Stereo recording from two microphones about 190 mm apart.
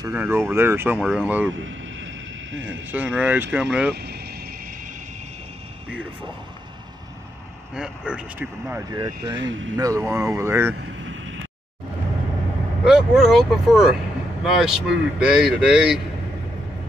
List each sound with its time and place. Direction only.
0.0 s speech: 10° right (ahead or behind)
1.5 s speech: 90° right
2.9 s speech: 10° right (ahead or behind)
3.9 s vehicle: 55° right (ahead or behind)
7.7 s speech: 5° right (ahead or behind)
8.9 s speech: 20° right (ahead or behind)
12.8 s speech: centre (ahead or behind)